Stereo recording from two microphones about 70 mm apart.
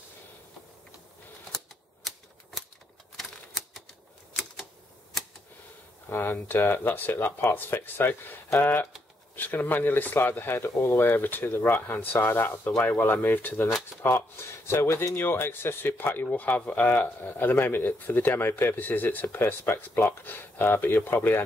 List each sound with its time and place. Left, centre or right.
3.2 s typewriter: centre
6.0 s a man's voice: left